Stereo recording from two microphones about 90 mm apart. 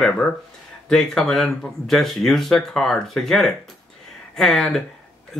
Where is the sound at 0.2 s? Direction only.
15° left (ahead or behind).